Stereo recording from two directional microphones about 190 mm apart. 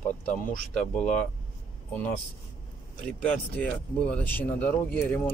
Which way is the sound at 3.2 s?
10° left (ahead or behind).